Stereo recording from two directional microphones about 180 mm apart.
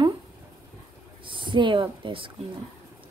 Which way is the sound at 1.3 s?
25° right (ahead or behind).